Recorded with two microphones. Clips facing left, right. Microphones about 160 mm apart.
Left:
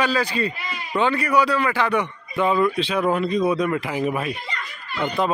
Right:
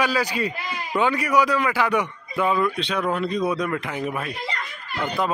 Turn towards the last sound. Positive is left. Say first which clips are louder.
# left 4 dB
turn(degrees=5)  # may be behind; listen again after turning